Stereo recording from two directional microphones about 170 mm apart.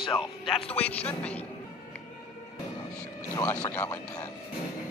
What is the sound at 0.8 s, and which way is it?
Speech, 10° left (ahead or behind).